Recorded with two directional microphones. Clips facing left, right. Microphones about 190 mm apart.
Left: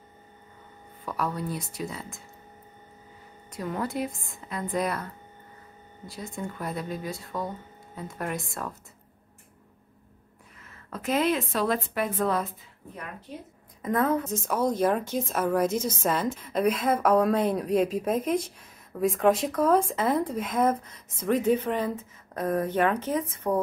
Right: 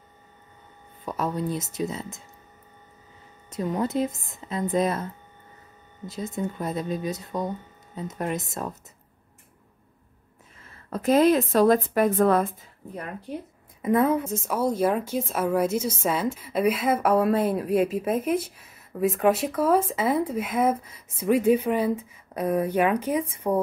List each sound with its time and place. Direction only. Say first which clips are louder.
1.0 s speech: right 3 dB; 20° right (ahead or behind)
3.4 s speech: right 5 dB; 20° right (ahead or behind)
10.6 s speech: right 7 dB; 35° right (ahead or behind); by 12.4 s 50° right (ahead or behind)
13.8 s speech: right 4 dB; 10° right (ahead or behind)